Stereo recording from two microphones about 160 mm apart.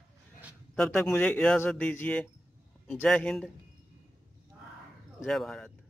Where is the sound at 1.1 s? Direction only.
5° left (ahead or behind).